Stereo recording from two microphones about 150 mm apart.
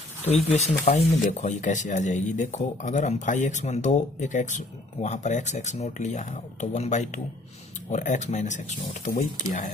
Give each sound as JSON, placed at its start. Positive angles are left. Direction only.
{"t": 0.3, "sound": "speech", "side_deg": 45}